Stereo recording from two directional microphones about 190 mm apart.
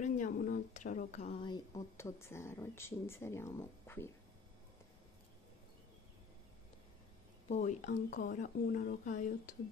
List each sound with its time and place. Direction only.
0.0 s a woman's voice: 45° left (ahead or behind); by 4.1 s 15° left (ahead or behind)
7.4 s speech: 40° left (ahead or behind)